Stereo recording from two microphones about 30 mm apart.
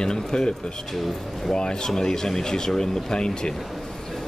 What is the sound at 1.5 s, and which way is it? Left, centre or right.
Speech, left.